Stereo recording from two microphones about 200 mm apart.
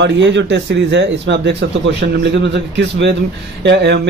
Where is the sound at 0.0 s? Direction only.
65° right (ahead or behind).